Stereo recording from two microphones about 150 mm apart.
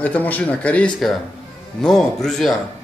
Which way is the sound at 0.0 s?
10° left (ahead or behind).